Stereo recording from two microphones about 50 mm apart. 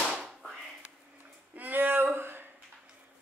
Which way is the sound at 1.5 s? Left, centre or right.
Right.